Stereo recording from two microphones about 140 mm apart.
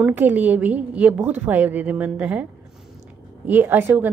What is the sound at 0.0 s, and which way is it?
A woman's voice, 10° right (ahead or behind).